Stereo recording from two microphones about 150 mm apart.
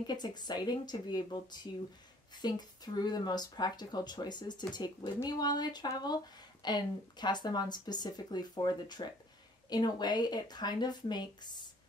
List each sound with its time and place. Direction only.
0.0 s speech: 30° left (ahead or behind)